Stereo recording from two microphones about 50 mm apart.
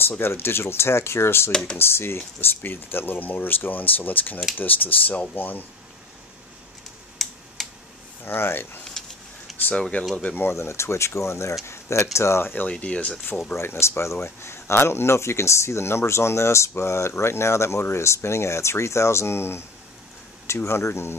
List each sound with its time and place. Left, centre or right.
0.2 s speech: left
1.5 s speech: centre
1.8 s speech: left
7.2 s tick-tock: centre
8.3 s speech: left
9.8 s speech: left
10.5 s speech: left
12.7 s speech: left
13.6 s speech: left
20.4 s speech: left